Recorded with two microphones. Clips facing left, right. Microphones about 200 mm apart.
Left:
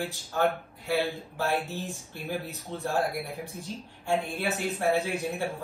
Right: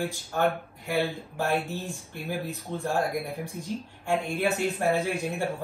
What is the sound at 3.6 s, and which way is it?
A woman's voice, 15° right (ahead or behind).